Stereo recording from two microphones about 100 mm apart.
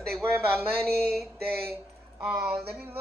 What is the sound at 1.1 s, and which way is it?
Mantra, 25° right (ahead or behind).